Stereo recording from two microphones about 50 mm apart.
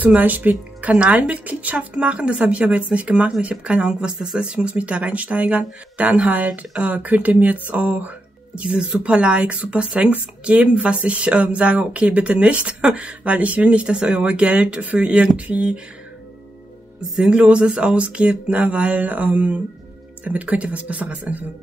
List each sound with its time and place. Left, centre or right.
0.2 s speech: right
1.3 s speech: right
8.5 s speech: centre
17.2 s speech: right